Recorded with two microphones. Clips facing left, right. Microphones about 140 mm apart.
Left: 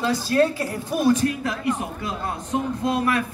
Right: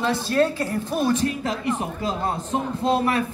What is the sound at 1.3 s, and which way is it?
Speech, 25° right (ahead or behind).